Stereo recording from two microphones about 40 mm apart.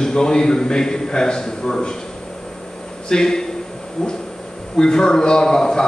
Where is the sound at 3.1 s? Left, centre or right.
Centre.